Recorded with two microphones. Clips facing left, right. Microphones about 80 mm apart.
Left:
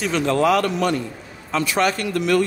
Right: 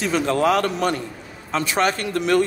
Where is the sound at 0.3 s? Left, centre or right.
Right.